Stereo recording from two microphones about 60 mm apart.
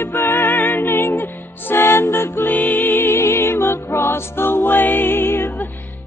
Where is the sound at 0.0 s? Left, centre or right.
Left.